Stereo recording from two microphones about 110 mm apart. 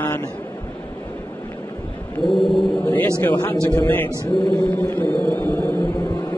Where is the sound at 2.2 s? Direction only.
Centre (ahead or behind).